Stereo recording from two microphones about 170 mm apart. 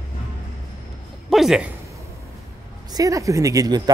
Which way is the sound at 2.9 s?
20° right (ahead or behind).